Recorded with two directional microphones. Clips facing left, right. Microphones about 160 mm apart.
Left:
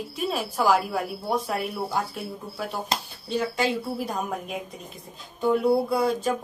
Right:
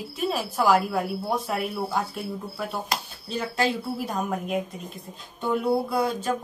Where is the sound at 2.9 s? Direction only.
25° left (ahead or behind).